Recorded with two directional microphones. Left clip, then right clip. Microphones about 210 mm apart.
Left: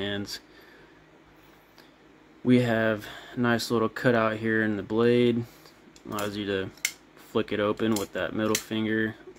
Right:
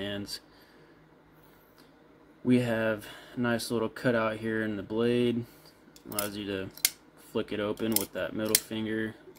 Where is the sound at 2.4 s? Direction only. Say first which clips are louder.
Left 4 dB; 15° left (ahead or behind).